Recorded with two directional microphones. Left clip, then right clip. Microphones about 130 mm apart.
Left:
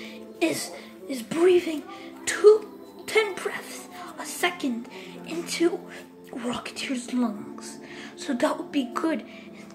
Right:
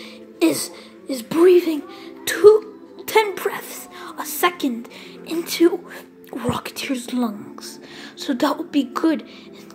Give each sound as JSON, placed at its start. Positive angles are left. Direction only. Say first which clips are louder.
{"t": 0.4, "sound": "a woman's voice", "louder": "right 7 dB", "side_deg": -35}
{"t": 7.2, "sound": "a woman's voice", "louder": "right 4 dB", "side_deg": -25}